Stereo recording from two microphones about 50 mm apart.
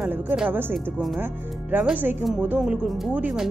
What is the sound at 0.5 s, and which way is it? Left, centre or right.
Speech, right.